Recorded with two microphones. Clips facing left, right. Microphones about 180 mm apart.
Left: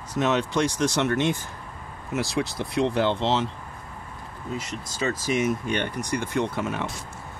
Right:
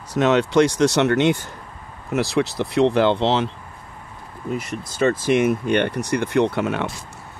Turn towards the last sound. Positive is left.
turn(degrees=-70)  # may be behind; listen again after turning